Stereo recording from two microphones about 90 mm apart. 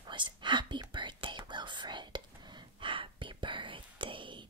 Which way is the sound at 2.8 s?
70° right (ahead or behind).